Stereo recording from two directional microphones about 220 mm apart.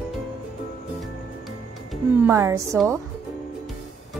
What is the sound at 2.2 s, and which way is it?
Speech, 15° right (ahead or behind).